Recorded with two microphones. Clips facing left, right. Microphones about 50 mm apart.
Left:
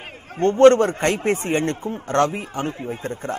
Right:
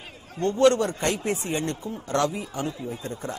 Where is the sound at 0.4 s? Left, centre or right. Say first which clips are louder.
Left 7 dB; left.